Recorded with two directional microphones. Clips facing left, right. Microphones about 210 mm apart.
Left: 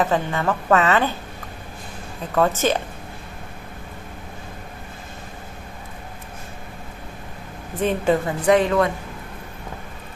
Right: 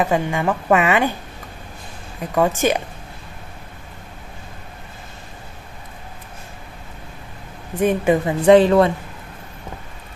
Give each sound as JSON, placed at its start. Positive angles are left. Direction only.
{"t": 0.0, "sound": "a woman's voice", "side_deg": -15}
{"t": 2.3, "sound": "a woman's voice", "side_deg": -15}
{"t": 7.8, "sound": "a woman's voice", "side_deg": -15}
{"t": 8.5, "sound": "speech", "side_deg": -30}